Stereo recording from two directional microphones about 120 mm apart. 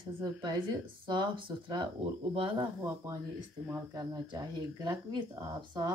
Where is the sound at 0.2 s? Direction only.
35° right (ahead or behind).